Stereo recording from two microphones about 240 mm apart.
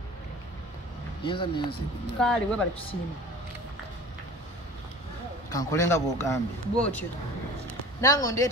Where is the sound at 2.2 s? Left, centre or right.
Centre.